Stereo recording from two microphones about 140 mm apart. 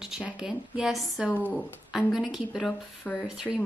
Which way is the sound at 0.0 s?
5° right (ahead or behind).